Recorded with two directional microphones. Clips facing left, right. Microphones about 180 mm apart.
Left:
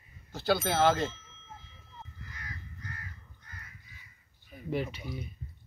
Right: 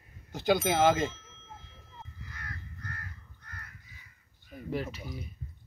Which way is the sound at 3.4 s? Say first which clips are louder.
Right 4 dB; 60° right (ahead or behind).